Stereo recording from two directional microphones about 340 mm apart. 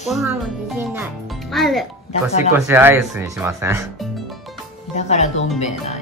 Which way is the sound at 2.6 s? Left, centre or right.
Centre.